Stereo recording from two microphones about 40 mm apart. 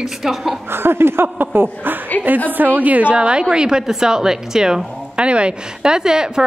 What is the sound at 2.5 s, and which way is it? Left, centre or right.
A woman's voice, right.